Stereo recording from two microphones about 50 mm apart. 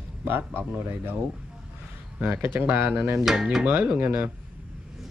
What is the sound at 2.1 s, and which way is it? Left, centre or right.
Speech, centre.